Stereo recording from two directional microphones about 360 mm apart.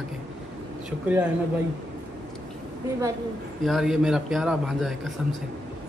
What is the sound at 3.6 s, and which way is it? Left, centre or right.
Speech, centre.